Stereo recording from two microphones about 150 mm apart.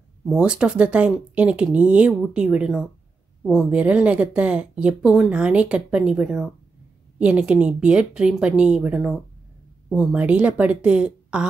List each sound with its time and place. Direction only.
0.2 s a woman's voice: 5° right (ahead or behind)